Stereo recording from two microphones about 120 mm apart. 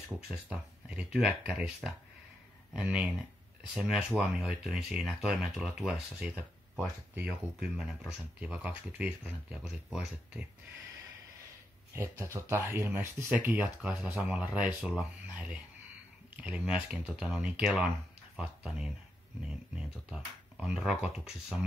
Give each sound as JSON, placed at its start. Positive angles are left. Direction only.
{"t": 0.5, "sound": "speech", "side_deg": -10}
{"t": 11.9, "sound": "speech", "side_deg": -25}